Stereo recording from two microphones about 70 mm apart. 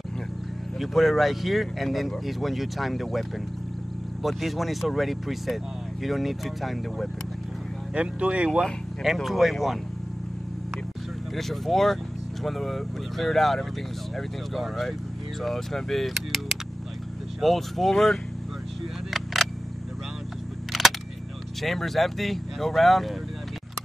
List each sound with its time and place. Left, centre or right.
0.7 s speech: centre
7.9 s speech: centre
9.0 s speech: centre
11.3 s speech: centre
19.0 s single-lens reflex camera: centre
20.7 s single-lens reflex camera: centre
21.5 s speech: centre